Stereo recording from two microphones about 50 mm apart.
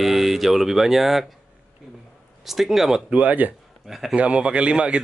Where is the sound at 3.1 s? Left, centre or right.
Right.